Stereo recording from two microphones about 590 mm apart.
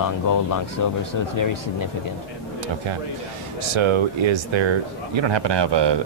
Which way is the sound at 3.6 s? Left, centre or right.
Right.